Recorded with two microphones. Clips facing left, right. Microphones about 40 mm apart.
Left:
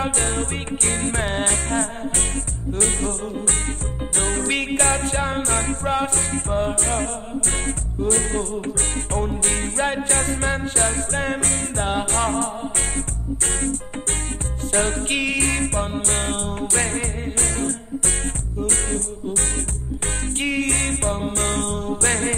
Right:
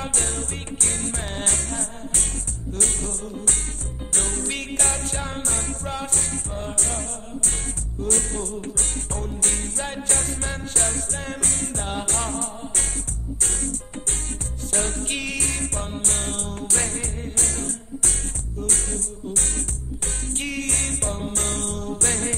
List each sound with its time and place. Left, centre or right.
0.0 s music: left
4.2 s music: left
14.7 s music: left